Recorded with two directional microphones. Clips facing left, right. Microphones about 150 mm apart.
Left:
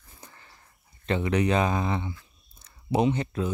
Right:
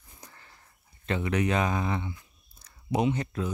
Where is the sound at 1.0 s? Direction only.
25° left (ahead or behind).